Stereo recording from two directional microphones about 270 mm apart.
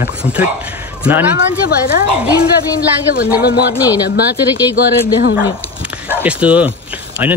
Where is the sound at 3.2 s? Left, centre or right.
Left.